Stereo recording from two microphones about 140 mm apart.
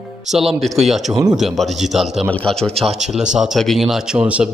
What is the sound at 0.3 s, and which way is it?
A man's voice, centre (ahead or behind).